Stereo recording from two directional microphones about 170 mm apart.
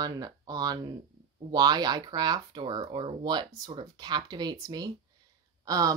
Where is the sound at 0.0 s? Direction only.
20° right (ahead or behind).